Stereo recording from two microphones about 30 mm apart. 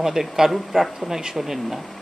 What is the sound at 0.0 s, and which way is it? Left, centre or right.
Speech, centre.